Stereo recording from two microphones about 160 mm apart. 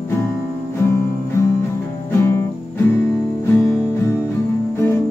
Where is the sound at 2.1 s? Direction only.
15° left (ahead or behind).